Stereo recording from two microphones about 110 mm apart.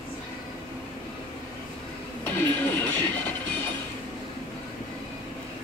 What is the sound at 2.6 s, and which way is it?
Music, 15° left (ahead or behind).